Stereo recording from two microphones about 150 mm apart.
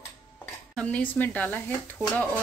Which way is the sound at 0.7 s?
10° left (ahead or behind).